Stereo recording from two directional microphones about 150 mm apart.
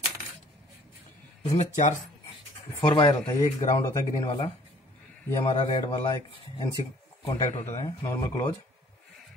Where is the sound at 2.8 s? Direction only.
30° left (ahead or behind).